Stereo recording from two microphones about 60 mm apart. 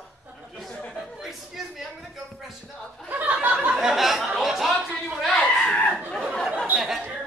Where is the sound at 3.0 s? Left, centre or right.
Right.